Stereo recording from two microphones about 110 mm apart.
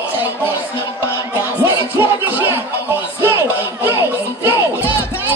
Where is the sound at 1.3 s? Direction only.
20° right (ahead or behind).